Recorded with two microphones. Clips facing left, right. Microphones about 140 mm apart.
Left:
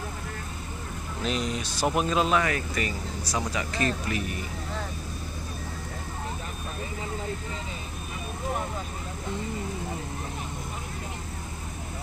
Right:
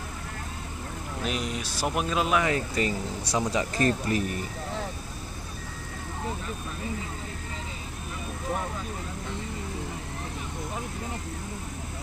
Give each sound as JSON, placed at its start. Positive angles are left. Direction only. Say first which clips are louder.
{"t": 1.2, "sound": "speech", "louder": "left 2 dB", "side_deg": -5}
{"t": 2.4, "sound": "speech", "louder": "right 2 dB", "side_deg": -25}
{"t": 3.7, "sound": "speech", "louder": "right 2 dB", "side_deg": -40}